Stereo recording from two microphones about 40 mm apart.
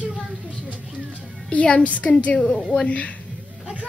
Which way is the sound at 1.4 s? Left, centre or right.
Left.